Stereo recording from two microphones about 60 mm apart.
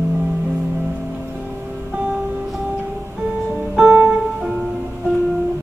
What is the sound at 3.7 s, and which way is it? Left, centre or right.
Music, centre.